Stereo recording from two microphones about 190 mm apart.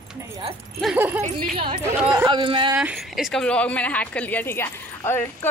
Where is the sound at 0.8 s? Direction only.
5° right (ahead or behind).